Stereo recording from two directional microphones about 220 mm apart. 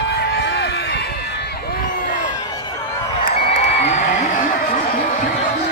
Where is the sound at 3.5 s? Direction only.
30° left (ahead or behind).